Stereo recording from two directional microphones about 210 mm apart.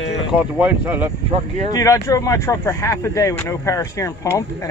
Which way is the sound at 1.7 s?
15° left (ahead or behind).